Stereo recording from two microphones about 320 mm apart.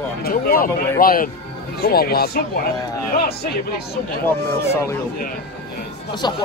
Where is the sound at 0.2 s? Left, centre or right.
Left.